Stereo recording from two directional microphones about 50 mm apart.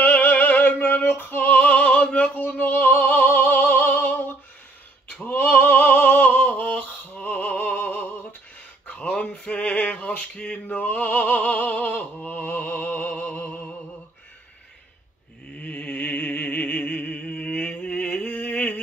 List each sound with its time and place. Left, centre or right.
0.0 s music: left
5.3 s opera: left
8.8 s male singing: left
15.5 s mantra: left
16.3 s music: left